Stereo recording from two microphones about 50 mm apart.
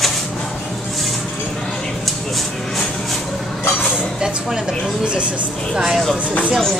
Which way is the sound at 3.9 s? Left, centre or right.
Centre.